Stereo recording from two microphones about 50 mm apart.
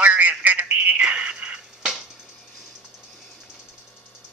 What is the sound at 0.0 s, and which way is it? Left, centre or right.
Telephone, right.